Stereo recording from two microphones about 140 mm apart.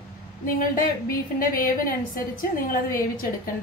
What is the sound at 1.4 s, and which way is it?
Speech, 80° left.